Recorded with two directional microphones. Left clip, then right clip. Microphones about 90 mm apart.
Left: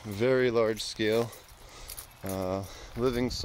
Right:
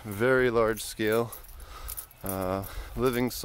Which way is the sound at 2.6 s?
70° right (ahead or behind).